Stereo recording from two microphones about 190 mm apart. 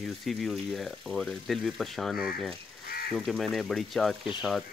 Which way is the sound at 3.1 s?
Centre (ahead or behind).